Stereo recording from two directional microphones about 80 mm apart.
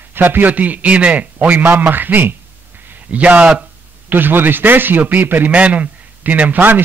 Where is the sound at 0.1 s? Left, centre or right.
Right.